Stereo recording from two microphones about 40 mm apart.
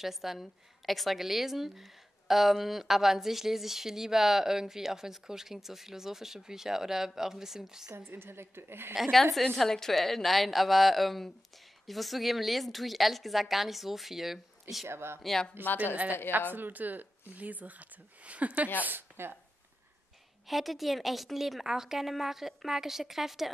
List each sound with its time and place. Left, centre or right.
0.0 s a woman's voice: centre
8.0 s a woman's voice: right
8.9 s a woman's voice: centre
14.9 s speech: right
15.6 s a woman's voice: right
16.5 s speech: right
18.8 s a woman's voice: right
20.4 s a woman's voice: centre